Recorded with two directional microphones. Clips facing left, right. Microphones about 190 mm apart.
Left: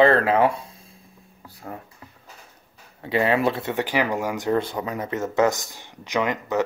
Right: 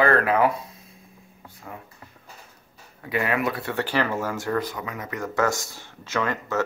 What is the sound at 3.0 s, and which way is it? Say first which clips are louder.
Speech: left 4 dB; 25° left (ahead or behind).